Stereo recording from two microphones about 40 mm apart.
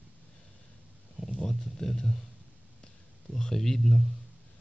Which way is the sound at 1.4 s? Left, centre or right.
Centre.